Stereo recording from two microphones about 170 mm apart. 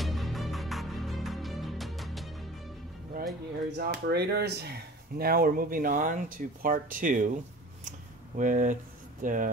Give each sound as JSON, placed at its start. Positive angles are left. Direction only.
{"t": 0.0, "sound": "music", "side_deg": 0}
{"t": 3.7, "sound": "speech", "side_deg": -70}
{"t": 8.4, "sound": "speech", "side_deg": -50}